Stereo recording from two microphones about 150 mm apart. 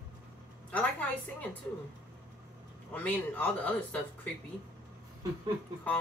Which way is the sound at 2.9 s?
10° left (ahead or behind).